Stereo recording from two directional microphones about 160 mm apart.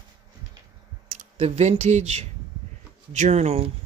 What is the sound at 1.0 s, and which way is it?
Speech, 40° right (ahead or behind).